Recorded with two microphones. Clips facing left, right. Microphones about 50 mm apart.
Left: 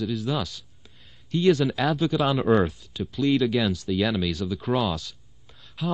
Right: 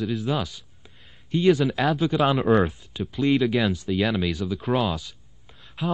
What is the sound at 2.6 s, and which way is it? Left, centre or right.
Speech, right.